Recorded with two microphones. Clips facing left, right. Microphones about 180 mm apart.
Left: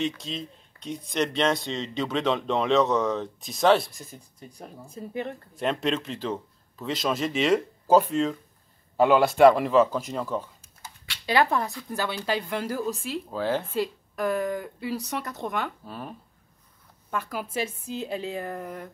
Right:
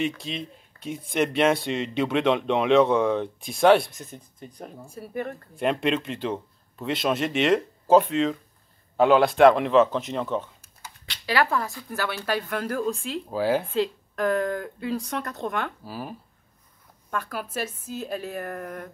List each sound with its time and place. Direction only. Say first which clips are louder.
0.0 s speech: right 1 dB; 5° right (ahead or behind)
5.6 s speech: right 2 dB; 5° right (ahead or behind)
11.4 s speech: left 1 dB; 20° left (ahead or behind)
13.3 s speech: right 4 dB; 10° right (ahead or behind)
13.7 s speech: right 3 dB; 10° left (ahead or behind)
15.8 s speech: right 3 dB; 5° right (ahead or behind)
17.1 s speech: even; 10° left (ahead or behind)